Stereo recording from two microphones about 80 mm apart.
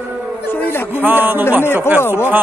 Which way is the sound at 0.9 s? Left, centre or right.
Right.